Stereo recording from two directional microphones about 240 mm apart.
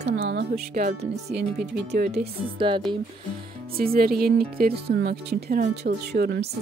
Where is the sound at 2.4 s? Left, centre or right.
Right.